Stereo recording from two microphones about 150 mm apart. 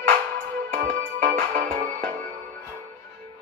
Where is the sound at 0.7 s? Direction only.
70° right (ahead or behind).